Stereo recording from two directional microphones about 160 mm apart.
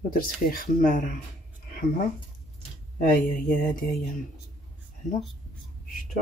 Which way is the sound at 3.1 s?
60° left (ahead or behind).